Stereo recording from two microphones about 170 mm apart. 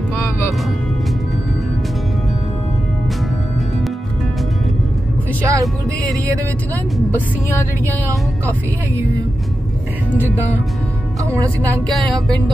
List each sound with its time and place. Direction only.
0.1 s music: 15° left (ahead or behind)
5.5 s music: 20° right (ahead or behind)